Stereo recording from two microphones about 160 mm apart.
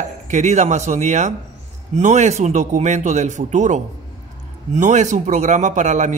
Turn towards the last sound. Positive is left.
turn(degrees=-50)  # may be behind; listen again after turning